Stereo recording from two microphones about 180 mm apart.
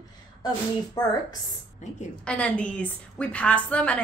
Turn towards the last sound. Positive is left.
turn(degrees=5)  # may be behind; listen again after turning